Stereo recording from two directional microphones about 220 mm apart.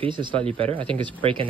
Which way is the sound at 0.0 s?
20° right (ahead or behind).